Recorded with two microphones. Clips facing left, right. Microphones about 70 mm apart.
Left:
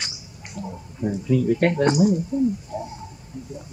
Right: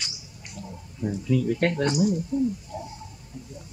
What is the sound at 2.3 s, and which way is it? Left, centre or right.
Speech, left.